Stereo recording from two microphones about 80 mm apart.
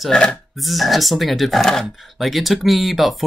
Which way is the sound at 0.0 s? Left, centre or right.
Centre.